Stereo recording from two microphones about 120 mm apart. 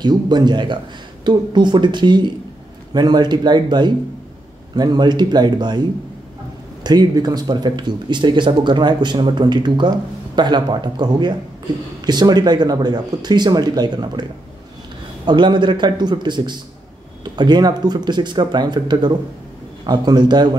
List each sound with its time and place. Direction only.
0.0 s speech: 35° right (ahead or behind)
15.2 s speech: 40° right (ahead or behind)